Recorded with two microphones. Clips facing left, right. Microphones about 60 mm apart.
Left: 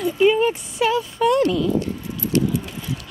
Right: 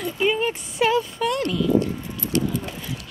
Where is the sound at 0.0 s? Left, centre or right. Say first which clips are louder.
Left 6 dB; centre.